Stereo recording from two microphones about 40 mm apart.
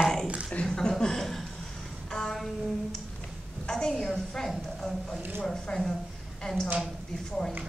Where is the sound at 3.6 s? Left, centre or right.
Centre.